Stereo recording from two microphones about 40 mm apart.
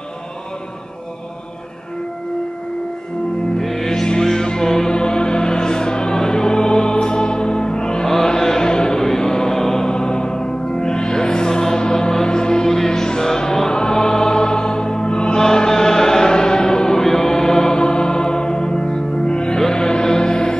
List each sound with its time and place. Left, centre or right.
3.5 s music: centre
8.1 s chant: centre